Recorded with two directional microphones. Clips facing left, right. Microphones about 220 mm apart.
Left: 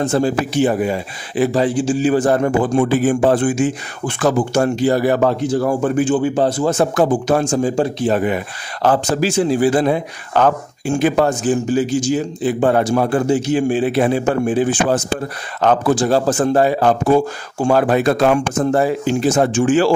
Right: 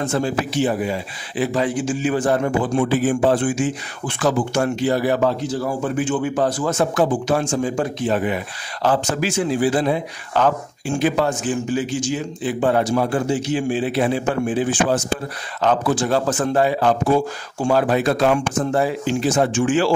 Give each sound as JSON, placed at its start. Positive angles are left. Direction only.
{"t": 0.0, "sound": "speech", "side_deg": 35}
{"t": 0.6, "sound": "speech", "side_deg": 50}
{"t": 1.5, "sound": "speech", "side_deg": 30}
{"t": 4.6, "sound": "speech", "side_deg": 35}
{"t": 6.0, "sound": "speech", "side_deg": 30}
{"t": 7.7, "sound": "speech", "side_deg": 30}
{"t": 8.1, "sound": "speech", "side_deg": 50}
{"t": 9.1, "sound": "speech", "side_deg": 35}
{"t": 15.9, "sound": "speech", "side_deg": 35}